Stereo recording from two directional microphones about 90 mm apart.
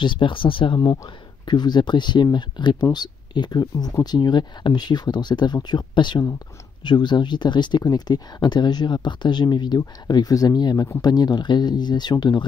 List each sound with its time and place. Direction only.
0.0 s speech: 65° left (ahead or behind)
1.4 s speech: 55° left (ahead or behind)